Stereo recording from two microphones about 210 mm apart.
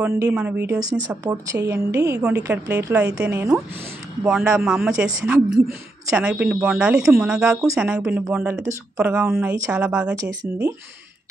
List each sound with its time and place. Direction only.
0.3 s speech: 5° right (ahead or behind)